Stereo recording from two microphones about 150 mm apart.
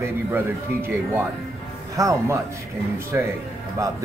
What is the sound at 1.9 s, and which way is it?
A man's voice, 20° right (ahead or behind).